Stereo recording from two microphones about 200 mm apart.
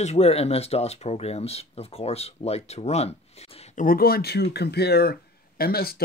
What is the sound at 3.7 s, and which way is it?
Speech, 45° left (ahead or behind).